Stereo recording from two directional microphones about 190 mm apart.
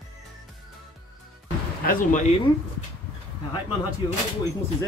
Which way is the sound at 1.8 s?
45° left (ahead or behind).